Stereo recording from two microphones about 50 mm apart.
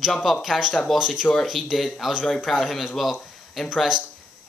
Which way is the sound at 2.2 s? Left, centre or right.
Left.